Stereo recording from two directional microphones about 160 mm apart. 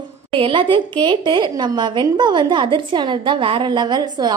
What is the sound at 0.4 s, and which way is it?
A woman's voice, 30° right (ahead or behind).